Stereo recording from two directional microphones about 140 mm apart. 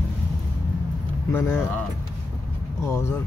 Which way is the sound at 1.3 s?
15° left (ahead or behind).